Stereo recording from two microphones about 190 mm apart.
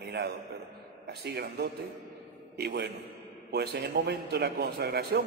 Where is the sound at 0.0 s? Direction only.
55° right (ahead or behind).